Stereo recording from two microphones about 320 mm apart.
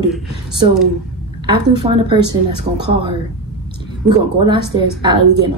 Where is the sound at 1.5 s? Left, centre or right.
Centre.